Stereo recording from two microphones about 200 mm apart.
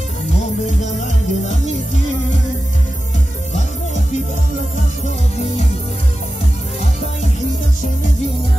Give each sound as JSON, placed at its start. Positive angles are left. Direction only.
{"t": 0.4, "sound": "music", "side_deg": 35}
{"t": 3.5, "sound": "music", "side_deg": 35}